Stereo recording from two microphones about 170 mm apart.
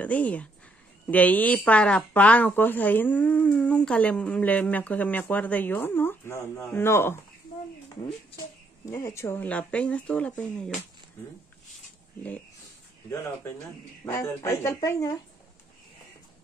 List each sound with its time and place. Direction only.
0.0 s speech: 10° left (ahead or behind)
8.8 s speech: 20° left (ahead or behind)
14.0 s speech: 15° left (ahead or behind)